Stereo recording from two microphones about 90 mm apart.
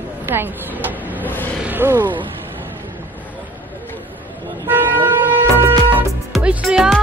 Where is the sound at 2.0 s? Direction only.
65° right (ahead or behind).